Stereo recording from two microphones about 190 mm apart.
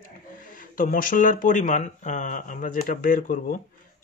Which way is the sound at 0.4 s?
45° left (ahead or behind).